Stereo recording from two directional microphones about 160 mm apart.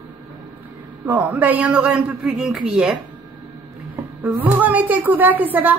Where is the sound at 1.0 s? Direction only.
10° right (ahead or behind).